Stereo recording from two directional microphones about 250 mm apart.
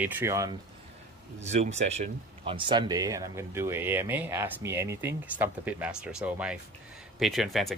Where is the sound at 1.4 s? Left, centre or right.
Right; by 7.7 s centre.